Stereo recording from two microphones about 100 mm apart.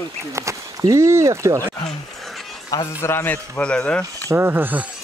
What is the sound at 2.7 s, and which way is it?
Speech, 30° left (ahead or behind).